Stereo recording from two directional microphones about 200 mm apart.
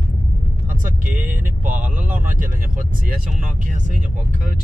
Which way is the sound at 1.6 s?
40° right (ahead or behind).